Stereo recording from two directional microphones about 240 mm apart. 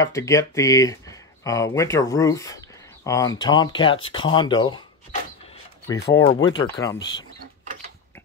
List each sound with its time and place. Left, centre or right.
0.0 s speech: centre
6.1 s speech: centre